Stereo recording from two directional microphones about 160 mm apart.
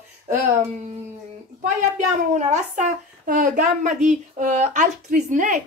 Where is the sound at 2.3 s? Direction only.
50° right (ahead or behind).